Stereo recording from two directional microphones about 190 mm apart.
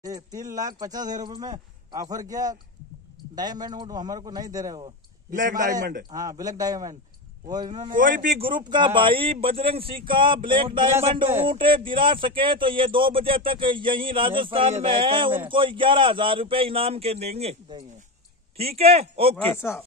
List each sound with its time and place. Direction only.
0.0 s speech: 20° right (ahead or behind)
5.3 s a man's voice: 45° right (ahead or behind)
6.0 s speech: 20° right (ahead or behind)
7.9 s a man's voice: 45° right (ahead or behind)
8.6 s speech: 25° right (ahead or behind)
19.3 s speech: 10° left (ahead or behind)